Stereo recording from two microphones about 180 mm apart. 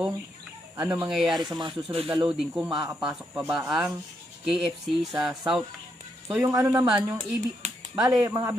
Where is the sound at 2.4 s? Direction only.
5° right (ahead or behind).